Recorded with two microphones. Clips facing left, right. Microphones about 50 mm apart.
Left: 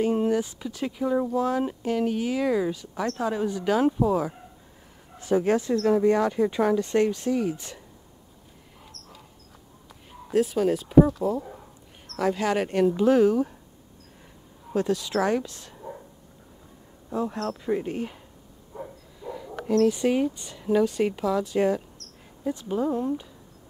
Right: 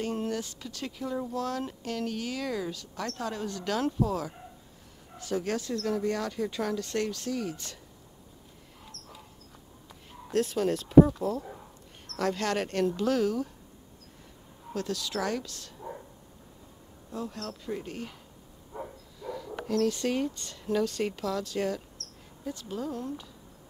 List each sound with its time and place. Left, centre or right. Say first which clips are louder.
0.0 s speech: left 9 dB; centre
10.1 s speech: left 5 dB; centre
14.7 s speech: left 8 dB; left
17.1 s speech: left 9 dB; left
18.7 s a sound: left 1 dB; centre
19.2 s speech: left 4 dB; centre